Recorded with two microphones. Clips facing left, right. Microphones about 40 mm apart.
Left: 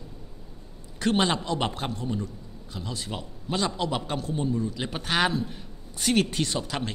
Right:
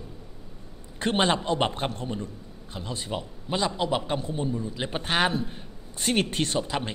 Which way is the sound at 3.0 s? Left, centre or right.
Centre.